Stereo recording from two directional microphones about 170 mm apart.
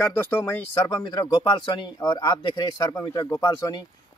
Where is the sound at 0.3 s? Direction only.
15° left (ahead or behind).